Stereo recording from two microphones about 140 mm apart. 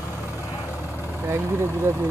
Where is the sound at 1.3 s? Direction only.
20° right (ahead or behind).